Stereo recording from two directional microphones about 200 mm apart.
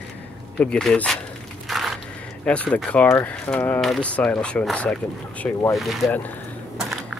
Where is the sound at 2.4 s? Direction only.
5° left (ahead or behind).